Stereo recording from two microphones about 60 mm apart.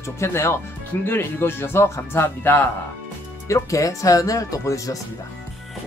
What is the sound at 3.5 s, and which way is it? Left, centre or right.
Speech, left.